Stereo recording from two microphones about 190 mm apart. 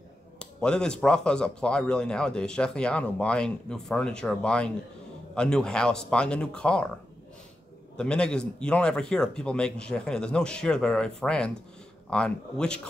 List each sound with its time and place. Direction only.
0.4 s speech: 5° left (ahead or behind)
8.0 s speech: 5° left (ahead or behind)